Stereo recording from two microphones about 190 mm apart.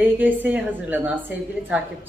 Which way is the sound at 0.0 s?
10° right (ahead or behind).